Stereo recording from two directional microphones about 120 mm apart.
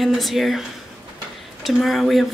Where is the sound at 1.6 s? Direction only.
Centre (ahead or behind).